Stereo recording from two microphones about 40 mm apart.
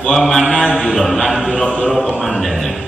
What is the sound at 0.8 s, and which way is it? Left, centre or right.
Mantra, centre.